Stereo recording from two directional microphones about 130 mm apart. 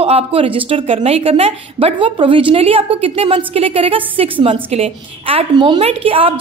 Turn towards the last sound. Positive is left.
turn(degrees=-45)  # may be behind; listen again after turning